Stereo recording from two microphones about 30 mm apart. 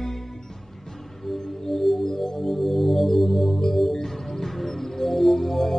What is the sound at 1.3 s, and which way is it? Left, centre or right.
Music, centre.